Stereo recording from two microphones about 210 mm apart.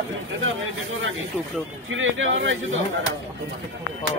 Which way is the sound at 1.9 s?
65° right (ahead or behind).